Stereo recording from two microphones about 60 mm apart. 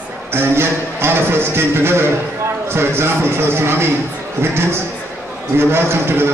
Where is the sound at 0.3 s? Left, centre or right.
Right.